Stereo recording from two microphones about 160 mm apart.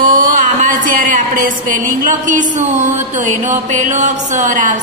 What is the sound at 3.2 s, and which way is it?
A woman's voice, 50° right (ahead or behind).